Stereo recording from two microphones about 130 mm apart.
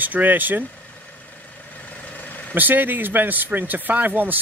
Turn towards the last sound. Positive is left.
turn(degrees=-15)  # may be behind; listen again after turning